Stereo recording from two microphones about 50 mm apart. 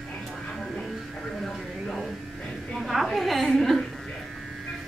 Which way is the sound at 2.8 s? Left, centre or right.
Centre.